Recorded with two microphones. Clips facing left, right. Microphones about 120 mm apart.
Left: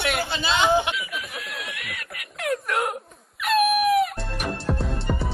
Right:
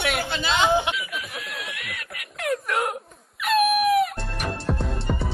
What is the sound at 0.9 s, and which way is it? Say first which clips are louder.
Snicker: even; centre (ahead or behind).